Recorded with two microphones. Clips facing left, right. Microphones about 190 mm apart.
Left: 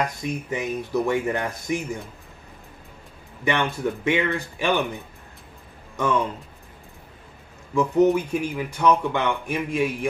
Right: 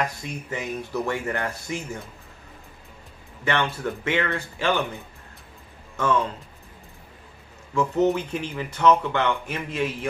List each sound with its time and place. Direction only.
0.2 s speech: 15° left (ahead or behind)
3.4 s speech: 15° left (ahead or behind)
7.7 s speech: 15° left (ahead or behind)